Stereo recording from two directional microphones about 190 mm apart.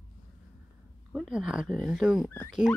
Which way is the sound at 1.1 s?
5° right (ahead or behind).